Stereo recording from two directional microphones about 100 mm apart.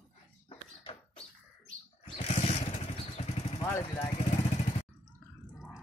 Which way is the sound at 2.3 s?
90° left.